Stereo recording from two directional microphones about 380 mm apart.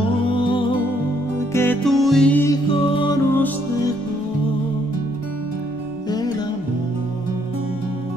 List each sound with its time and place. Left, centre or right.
0.3 s music: centre
6.0 s music: centre